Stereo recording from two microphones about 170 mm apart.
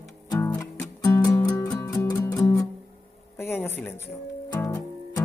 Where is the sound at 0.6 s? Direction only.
20° left (ahead or behind).